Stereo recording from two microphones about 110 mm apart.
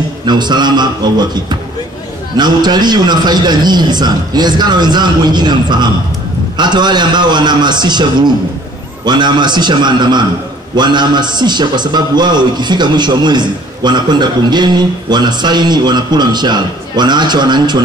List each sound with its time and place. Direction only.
0.2 s a man's voice: 40° right (ahead or behind)